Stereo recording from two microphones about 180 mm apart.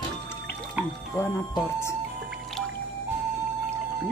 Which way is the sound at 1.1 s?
15° left (ahead or behind).